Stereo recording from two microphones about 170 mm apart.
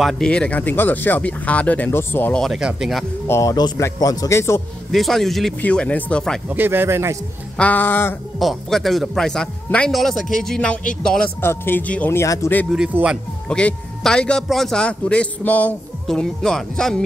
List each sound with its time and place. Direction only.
0.0 s speech: 5° left (ahead or behind)
2.4 s a man's voice: centre (ahead or behind)
3.3 s speech: 20° left (ahead or behind)
4.9 s a man's voice: centre (ahead or behind)
6.5 s speech: 10° right (ahead or behind)
7.5 s speech: 10° left (ahead or behind)
8.4 s a man's voice: centre (ahead or behind)
12.7 s a man's voice: 5° right (ahead or behind)
13.5 s a man's voice: 5° left (ahead or behind)